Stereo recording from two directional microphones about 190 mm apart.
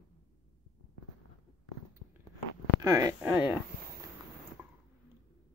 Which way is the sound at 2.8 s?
15° right (ahead or behind).